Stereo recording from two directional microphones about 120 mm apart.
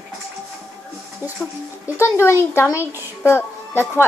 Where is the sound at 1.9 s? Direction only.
20° left (ahead or behind).